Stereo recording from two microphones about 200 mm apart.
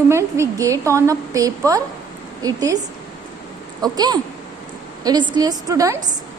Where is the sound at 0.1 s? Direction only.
15° right (ahead or behind).